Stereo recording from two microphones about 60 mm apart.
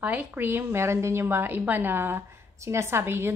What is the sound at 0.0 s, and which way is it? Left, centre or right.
A woman's voice, right.